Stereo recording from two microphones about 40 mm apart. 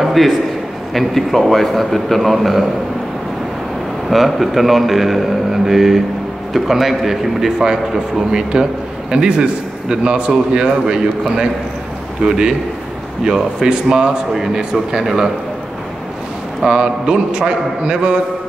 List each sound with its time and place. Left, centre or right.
0.0 s a sound: centre
0.9 s a man's voice: centre
4.1 s a man's voice: centre
16.6 s a man's voice: right